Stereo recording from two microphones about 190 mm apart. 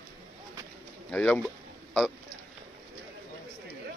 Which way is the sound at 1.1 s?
5° left (ahead or behind).